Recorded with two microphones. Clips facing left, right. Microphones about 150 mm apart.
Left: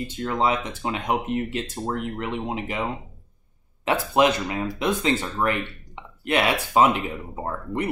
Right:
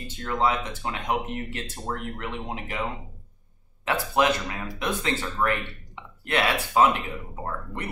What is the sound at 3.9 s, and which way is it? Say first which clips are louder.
Speech: left 3 dB; 20° left (ahead or behind).